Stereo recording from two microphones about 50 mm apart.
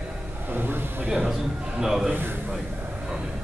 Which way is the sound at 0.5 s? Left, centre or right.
Right.